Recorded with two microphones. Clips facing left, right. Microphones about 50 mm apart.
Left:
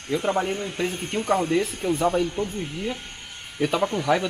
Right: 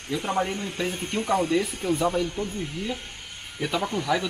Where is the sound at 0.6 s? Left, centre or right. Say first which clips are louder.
Left 2 dB; centre.